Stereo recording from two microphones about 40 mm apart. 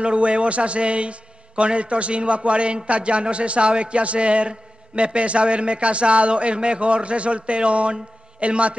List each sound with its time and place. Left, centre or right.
0.0 s a man's voice: right